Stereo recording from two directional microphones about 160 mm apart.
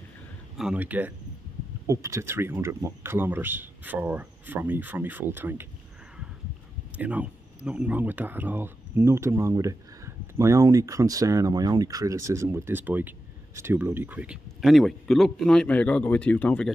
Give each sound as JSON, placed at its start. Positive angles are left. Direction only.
{"t": 0.6, "sound": "speech", "side_deg": -5}
{"t": 7.0, "sound": "speech", "side_deg": -10}